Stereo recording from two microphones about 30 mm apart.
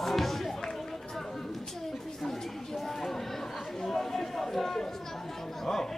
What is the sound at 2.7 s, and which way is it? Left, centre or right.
Chatter, centre.